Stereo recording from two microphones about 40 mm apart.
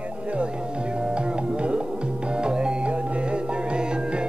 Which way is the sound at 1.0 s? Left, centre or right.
Right.